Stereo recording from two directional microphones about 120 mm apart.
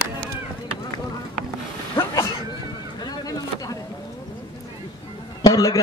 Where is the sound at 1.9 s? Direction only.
25° left (ahead or behind).